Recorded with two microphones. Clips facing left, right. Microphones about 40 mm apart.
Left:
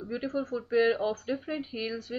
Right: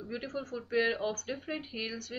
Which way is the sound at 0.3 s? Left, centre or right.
Left.